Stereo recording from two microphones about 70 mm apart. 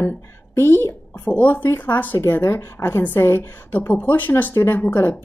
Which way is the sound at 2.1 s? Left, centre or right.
Left.